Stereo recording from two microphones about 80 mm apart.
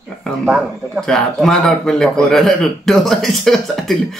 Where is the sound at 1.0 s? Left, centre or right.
Centre.